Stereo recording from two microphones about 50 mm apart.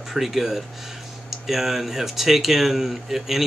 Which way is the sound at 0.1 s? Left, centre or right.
Centre.